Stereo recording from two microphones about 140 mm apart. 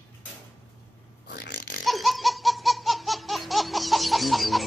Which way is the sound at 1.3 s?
90° left.